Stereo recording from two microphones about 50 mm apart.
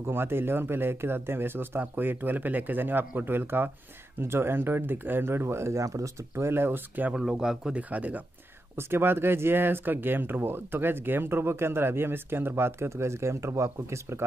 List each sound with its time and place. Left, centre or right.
0.0 s speech: right
6.3 s speech: right
7.2 s speech: centre
7.7 s speech: right
8.7 s speech: right